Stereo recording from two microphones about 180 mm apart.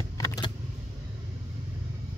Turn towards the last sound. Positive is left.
turn(degrees=20)  # may be behind; listen again after turning